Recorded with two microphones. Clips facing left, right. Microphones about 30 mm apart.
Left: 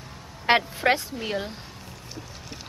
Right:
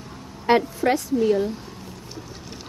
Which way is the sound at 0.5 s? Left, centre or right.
Left.